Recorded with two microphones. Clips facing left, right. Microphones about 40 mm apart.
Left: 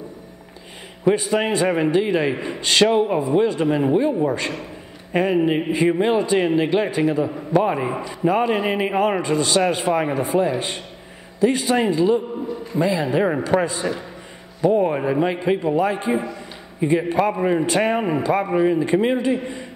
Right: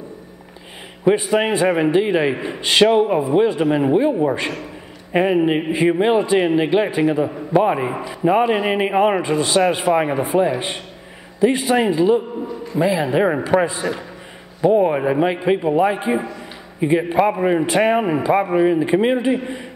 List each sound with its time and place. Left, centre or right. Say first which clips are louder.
1.0 s a man's voice: right 2 dB; centre